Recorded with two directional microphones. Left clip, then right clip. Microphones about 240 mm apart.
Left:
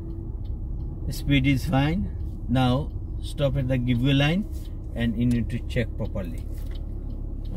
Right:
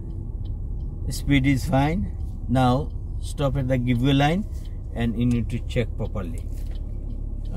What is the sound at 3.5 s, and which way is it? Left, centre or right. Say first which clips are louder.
A man's voice: right 2 dB; centre.